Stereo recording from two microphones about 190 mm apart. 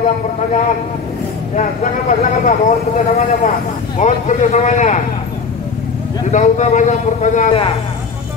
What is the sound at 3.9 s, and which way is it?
A man's voice, 40° left (ahead or behind).